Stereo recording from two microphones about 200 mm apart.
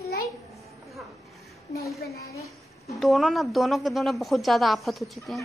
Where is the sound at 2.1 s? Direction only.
15° left (ahead or behind).